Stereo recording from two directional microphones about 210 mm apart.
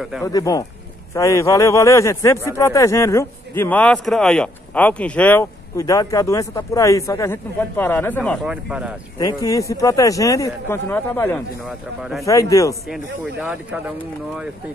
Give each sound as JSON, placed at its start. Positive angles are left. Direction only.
{"t": 0.2, "sound": "speech", "side_deg": 15}
{"t": 8.5, "sound": "speech", "side_deg": -5}
{"t": 9.4, "sound": "speech", "side_deg": 15}
{"t": 11.6, "sound": "speech", "side_deg": 0}
{"t": 12.3, "sound": "speech", "side_deg": 15}
{"t": 12.8, "sound": "speech", "side_deg": -5}